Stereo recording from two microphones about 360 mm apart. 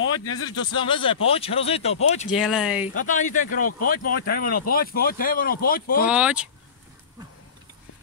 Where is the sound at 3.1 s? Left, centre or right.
Left.